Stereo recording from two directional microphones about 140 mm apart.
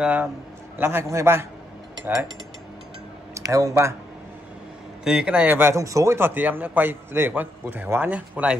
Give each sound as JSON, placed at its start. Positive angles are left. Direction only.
{"t": 0.0, "sound": "a man's voice", "side_deg": -10}
{"t": 3.3, "sound": "speech", "side_deg": -25}
{"t": 5.0, "sound": "a man's voice", "side_deg": -5}